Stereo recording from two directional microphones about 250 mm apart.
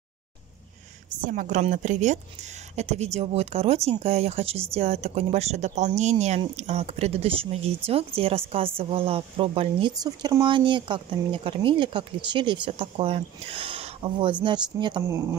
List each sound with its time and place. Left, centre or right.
1.2 s speech: right